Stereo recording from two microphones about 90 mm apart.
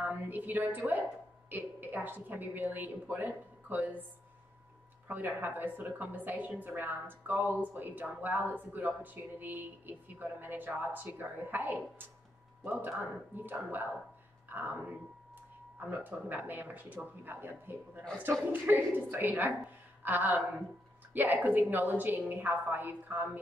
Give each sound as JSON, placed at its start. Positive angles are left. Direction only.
{"t": 0.0, "sound": "a woman's voice", "side_deg": -20}
{"t": 5.0, "sound": "a woman's voice", "side_deg": -20}
{"t": 13.4, "sound": "a woman's voice", "side_deg": -20}